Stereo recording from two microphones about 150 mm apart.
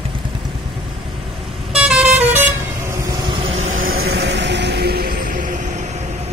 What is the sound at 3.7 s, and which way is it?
Vehicle, 70° right (ahead or behind).